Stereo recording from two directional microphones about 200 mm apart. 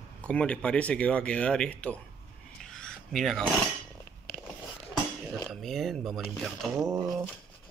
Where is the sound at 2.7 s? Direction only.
Centre (ahead or behind).